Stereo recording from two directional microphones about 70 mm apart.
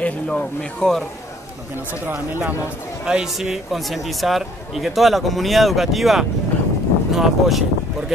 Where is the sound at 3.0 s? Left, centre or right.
Centre.